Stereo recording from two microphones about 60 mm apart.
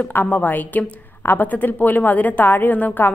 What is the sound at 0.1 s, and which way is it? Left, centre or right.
A woman's voice, left.